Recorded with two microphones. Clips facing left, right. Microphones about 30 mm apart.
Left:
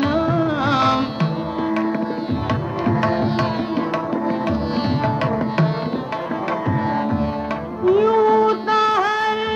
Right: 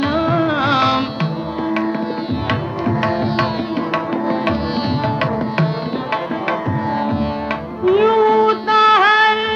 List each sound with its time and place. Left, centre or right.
0.0 s music: right
3.0 s music: centre
4.8 s music: right
7.8 s music: right
8.2 s music: centre
8.8 s music of bollywood: right